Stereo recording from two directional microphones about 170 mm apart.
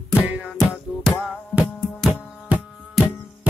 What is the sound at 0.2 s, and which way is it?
Music, 5° right (ahead or behind).